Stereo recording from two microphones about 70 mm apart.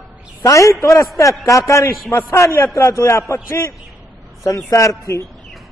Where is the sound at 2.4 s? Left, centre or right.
Left.